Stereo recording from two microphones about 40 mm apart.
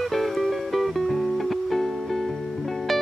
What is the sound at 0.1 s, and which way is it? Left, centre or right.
Music, centre.